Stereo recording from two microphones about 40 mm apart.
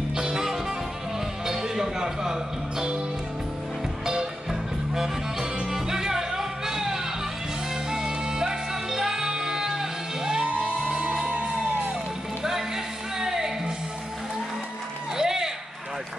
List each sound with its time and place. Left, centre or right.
0.1 s music: centre
4.0 s music: centre; by 11.7 s right
13.2 s music: centre
15.1 s a sound: centre